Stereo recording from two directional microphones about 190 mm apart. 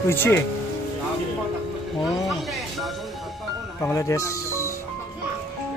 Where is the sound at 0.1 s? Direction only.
10° left (ahead or behind).